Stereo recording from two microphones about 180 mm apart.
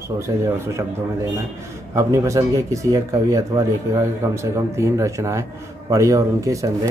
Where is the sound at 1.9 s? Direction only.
15° right (ahead or behind).